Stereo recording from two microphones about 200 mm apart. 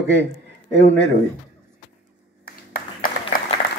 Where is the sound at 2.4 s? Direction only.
45° left (ahead or behind).